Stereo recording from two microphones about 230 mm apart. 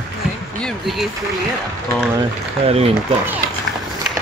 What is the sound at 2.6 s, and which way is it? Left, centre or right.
Speech, right.